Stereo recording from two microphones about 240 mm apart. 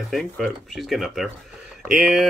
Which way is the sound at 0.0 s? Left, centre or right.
Centre.